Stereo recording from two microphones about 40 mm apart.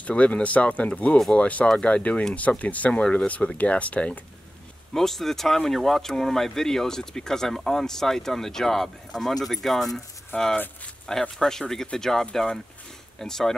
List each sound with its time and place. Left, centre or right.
0.0 s speech: left
2.9 s speech: left
4.9 s speech: centre